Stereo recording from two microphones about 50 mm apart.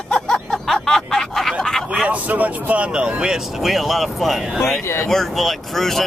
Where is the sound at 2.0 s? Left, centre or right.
Right.